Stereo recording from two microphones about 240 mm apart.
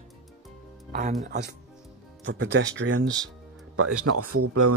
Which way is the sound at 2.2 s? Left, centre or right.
Right.